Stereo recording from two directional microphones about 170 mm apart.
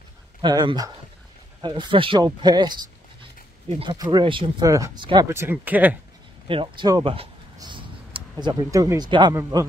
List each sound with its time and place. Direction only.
0.4 s speech: 25° right (ahead or behind)
3.8 s speech: 25° right (ahead or behind)
4.6 s speech: 20° right (ahead or behind)
6.4 s speech: 30° right (ahead or behind)